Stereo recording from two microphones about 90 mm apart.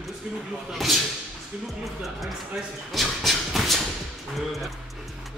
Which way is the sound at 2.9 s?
Centre (ahead or behind).